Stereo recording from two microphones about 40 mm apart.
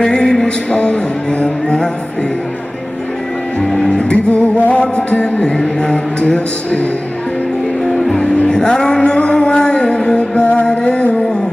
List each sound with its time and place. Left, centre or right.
0.0 s music: centre
3.6 s music: centre
3.9 s music: left
8.1 s music: centre